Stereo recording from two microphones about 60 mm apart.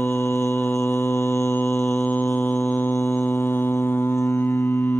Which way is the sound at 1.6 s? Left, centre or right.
Left.